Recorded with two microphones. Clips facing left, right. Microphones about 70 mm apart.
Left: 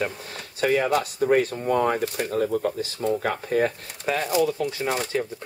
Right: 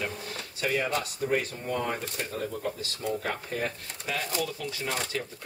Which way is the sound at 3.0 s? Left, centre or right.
Left.